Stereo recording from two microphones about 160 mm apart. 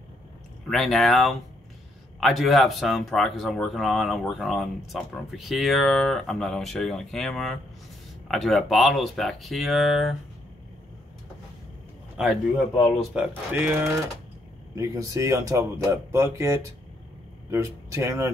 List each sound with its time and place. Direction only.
0.7 s speech: centre (ahead or behind)
12.2 s speech: 5° right (ahead or behind)